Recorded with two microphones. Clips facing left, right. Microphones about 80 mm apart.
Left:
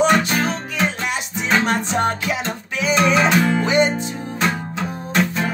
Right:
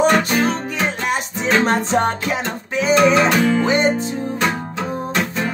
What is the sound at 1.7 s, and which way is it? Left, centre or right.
Music, right.